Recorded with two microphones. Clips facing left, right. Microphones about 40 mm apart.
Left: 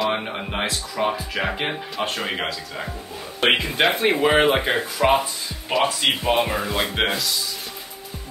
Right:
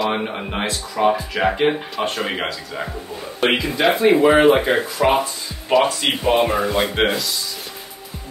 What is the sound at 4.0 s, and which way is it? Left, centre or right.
Speech, left.